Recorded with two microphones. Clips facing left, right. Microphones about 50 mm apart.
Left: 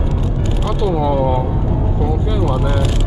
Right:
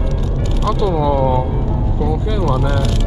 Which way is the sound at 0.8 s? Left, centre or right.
Centre.